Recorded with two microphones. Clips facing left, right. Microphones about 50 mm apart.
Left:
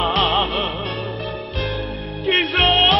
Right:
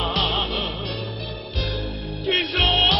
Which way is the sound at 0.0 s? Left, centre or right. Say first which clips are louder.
Left 6 dB; left.